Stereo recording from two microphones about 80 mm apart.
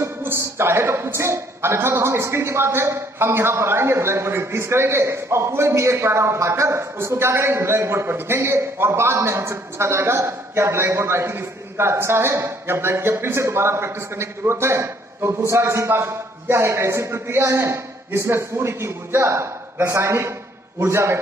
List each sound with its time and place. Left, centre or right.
0.0 s a woman's voice: right